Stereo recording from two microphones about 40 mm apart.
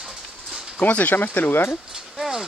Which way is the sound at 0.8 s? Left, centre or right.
Left.